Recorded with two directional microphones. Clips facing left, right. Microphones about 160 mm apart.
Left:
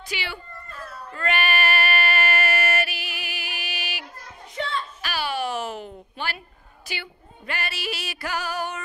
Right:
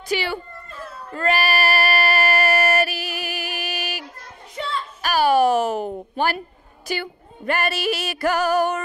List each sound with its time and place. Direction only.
0.1 s speech: 40° right (ahead or behind)
1.1 s female singing: 35° right (ahead or behind)
5.0 s a sound: 45° right (ahead or behind)
6.9 s music: 45° right (ahead or behind)